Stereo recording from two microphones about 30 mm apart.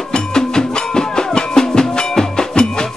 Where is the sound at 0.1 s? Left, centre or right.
Left.